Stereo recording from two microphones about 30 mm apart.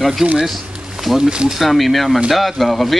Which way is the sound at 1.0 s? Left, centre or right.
Centre.